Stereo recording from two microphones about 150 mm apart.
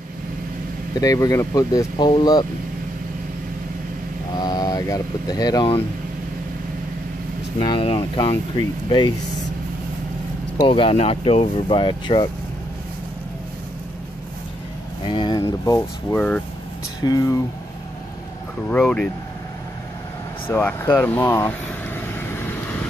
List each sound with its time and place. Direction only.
1.0 s speech: 20° left (ahead or behind)
4.3 s speech: 25° left (ahead or behind)
7.5 s speech: 35° left (ahead or behind)
10.6 s speech: 40° left (ahead or behind)
15.0 s speech: 30° left (ahead or behind)
16.2 s speech: 5° left (ahead or behind)
17.0 s speech: 25° left (ahead or behind)
18.7 s speech: 5° left (ahead or behind)
20.4 s speech: 15° left (ahead or behind)
22.0 s vehicle: 15° left (ahead or behind)